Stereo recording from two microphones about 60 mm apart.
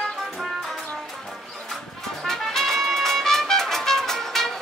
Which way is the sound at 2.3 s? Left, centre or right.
Centre.